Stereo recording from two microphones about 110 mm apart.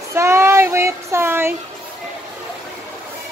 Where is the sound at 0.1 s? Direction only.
25° right (ahead or behind).